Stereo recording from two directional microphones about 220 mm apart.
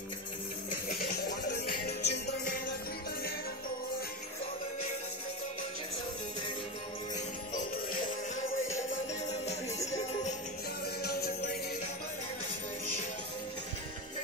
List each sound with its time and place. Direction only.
0.8 s music: 50° left (ahead or behind)
7.7 s music: 40° left (ahead or behind)
9.3 s music: 30° left (ahead or behind)
9.8 s music: 15° left (ahead or behind)
11.0 s music: 45° left (ahead or behind)